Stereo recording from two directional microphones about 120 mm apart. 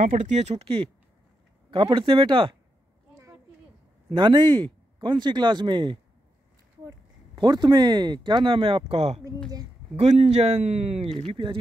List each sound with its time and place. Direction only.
0.0 s speech: 90° right; by 2.5 s 45° right (ahead or behind)
4.1 s speech: 40° right (ahead or behind)